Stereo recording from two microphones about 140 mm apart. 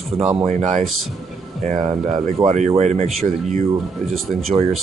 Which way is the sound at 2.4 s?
50° right (ahead or behind).